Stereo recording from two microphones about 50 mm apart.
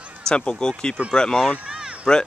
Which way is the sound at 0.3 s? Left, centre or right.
Centre.